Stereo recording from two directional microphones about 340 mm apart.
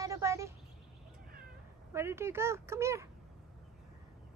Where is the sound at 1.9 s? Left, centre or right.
Centre.